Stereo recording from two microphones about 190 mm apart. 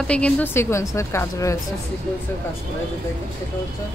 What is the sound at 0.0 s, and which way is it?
A woman's voice, 5° left (ahead or behind).